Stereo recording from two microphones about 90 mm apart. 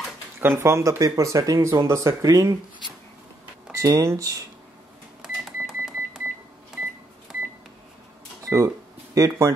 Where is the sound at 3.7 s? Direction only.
40° right (ahead or behind).